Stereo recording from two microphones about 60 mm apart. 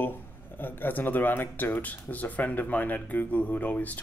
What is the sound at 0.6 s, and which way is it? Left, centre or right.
Speech, left.